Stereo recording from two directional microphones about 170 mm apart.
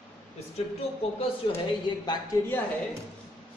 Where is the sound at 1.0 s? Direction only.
35° left (ahead or behind).